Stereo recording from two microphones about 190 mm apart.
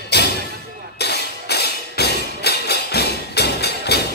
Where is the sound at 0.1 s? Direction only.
60° left (ahead or behind).